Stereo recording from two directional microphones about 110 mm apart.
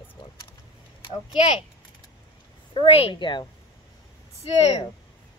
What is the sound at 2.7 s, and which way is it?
Speech, 55° left (ahead or behind).